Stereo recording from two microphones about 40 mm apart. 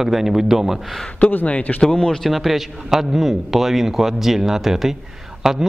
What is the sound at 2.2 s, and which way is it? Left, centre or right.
Speech, centre.